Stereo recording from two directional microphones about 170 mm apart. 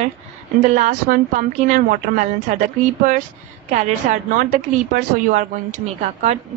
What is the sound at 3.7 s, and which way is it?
A woman's voice, 45° right (ahead or behind).